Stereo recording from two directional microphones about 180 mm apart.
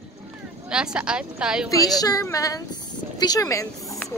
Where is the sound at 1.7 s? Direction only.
20° left (ahead or behind).